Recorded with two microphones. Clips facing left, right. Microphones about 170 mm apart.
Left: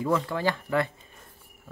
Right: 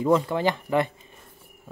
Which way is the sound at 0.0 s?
20° right (ahead or behind).